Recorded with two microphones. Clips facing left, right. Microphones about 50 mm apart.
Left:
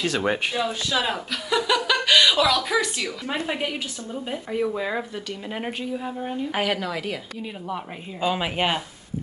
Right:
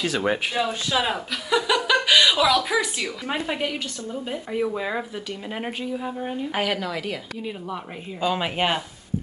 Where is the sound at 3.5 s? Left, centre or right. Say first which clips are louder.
Right 1 dB; centre.